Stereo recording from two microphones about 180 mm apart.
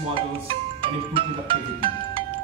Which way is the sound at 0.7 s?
30° right (ahead or behind).